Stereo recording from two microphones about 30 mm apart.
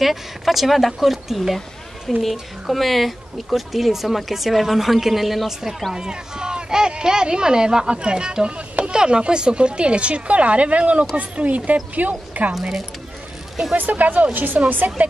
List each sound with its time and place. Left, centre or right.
0.0 s speech: centre
5.9 s speech: right
13.7 s speech: right
14.3 s speech: right
15.0 s speech: right